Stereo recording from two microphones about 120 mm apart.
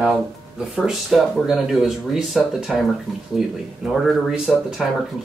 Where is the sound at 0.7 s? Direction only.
5° right (ahead or behind).